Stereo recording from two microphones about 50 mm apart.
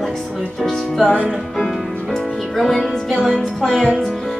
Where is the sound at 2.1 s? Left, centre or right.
Centre.